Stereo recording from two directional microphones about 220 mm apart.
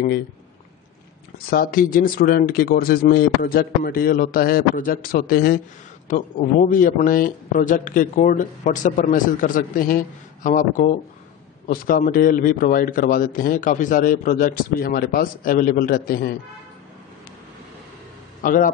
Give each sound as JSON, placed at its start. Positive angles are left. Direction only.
{"t": 1.5, "sound": "a man's voice", "side_deg": 40}
{"t": 18.4, "sound": "speech", "side_deg": 40}